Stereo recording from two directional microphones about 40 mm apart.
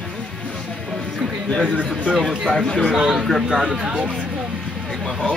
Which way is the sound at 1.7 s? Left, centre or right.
Right.